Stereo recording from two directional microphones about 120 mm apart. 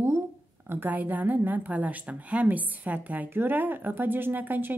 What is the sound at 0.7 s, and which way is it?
A woman's voice, 15° right (ahead or behind).